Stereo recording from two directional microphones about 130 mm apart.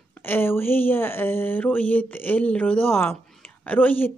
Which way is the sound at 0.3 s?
15° left (ahead or behind).